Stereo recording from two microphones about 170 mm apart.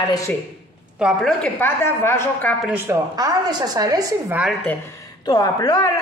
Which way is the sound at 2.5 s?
5° right (ahead or behind).